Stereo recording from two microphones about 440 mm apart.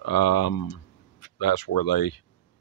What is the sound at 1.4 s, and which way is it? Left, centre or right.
Speech, left.